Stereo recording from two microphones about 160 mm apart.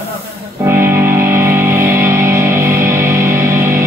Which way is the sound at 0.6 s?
15° right (ahead or behind).